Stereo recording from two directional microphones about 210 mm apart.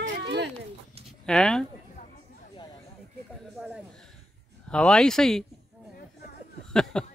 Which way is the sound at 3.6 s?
5° right (ahead or behind).